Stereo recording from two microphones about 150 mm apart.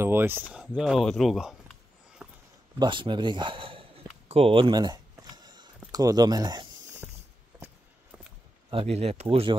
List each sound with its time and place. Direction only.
0.0 s speech: 15° right (ahead or behind)
2.8 s a man's voice: 35° right (ahead or behind)
4.3 s a sound: 40° right (ahead or behind)
5.9 s speech: 25° right (ahead or behind)
7.0 s mechanisms: 5° right (ahead or behind)
8.6 s speech: 40° right (ahead or behind)